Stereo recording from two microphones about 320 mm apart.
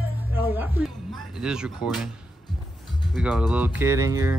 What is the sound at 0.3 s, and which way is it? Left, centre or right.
Music, centre.